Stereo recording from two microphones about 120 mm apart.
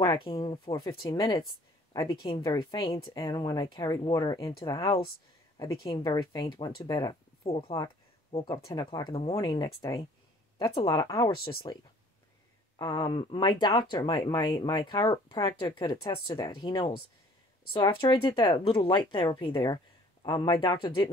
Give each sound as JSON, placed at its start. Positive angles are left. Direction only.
{"t": 0.0, "sound": "speech", "side_deg": 40}
{"t": 2.4, "sound": "speech", "side_deg": 35}
{"t": 5.7, "sound": "speech", "side_deg": 45}
{"t": 10.6, "sound": "speech", "side_deg": 45}
{"t": 10.9, "sound": "speech", "side_deg": 30}
{"t": 11.2, "sound": "speech", "side_deg": 45}
{"t": 12.7, "sound": "speech", "side_deg": 35}